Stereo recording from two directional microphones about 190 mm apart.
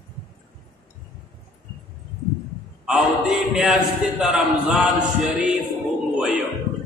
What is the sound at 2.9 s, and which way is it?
A man's voice, 5° right (ahead or behind).